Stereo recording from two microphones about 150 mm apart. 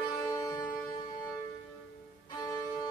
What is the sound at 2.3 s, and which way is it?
Music, 20° left (ahead or behind).